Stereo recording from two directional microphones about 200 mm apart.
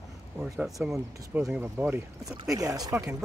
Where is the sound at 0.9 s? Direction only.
15° right (ahead or behind).